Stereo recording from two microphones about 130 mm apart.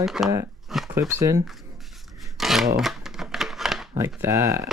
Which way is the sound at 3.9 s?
25° right (ahead or behind).